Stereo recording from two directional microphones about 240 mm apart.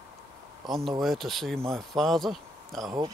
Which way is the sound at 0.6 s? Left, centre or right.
Centre.